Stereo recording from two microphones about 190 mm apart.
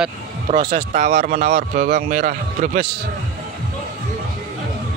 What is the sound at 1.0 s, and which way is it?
A man's voice, 40° right (ahead or behind).